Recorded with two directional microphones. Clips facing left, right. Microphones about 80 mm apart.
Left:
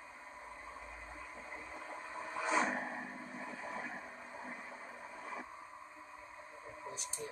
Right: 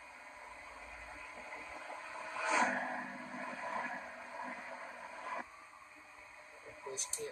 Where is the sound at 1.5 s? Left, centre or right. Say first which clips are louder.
Even; left.